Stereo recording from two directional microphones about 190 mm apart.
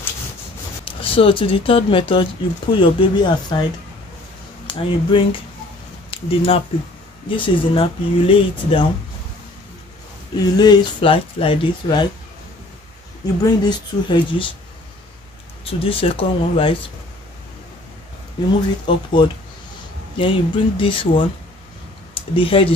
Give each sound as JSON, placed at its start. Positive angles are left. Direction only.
{"t": 0.8, "sound": "speech", "side_deg": 30}
{"t": 4.6, "sound": "speech", "side_deg": 25}
{"t": 10.3, "sound": "speech", "side_deg": 20}
{"t": 13.4, "sound": "speech", "side_deg": 25}
{"t": 15.6, "sound": "speech", "side_deg": 30}
{"t": 18.9, "sound": "speech", "side_deg": 25}